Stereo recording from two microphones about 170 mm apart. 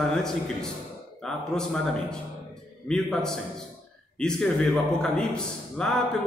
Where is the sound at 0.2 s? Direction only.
5° left (ahead or behind).